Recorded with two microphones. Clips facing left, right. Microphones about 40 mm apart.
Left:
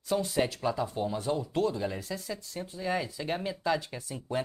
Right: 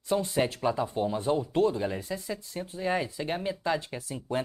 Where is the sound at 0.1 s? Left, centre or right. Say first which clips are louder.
Right 1 dB; centre.